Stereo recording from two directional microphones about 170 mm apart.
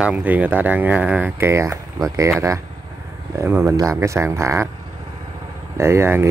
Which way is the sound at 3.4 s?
15° right (ahead or behind).